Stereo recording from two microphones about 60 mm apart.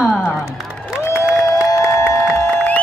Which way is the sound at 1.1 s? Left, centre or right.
Left.